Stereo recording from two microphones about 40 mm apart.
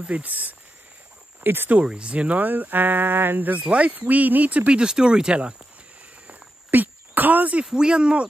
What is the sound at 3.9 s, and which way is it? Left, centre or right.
Speech, right.